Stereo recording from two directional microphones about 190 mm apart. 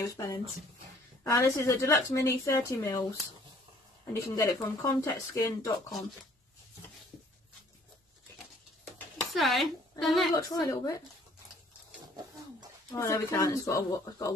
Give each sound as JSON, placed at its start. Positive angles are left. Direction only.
{"t": 0.0, "sound": "speech", "side_deg": 15}
{"t": 9.2, "sound": "speech", "side_deg": 0}
{"t": 10.3, "sound": "speech", "side_deg": 20}
{"t": 12.9, "sound": "speech", "side_deg": 15}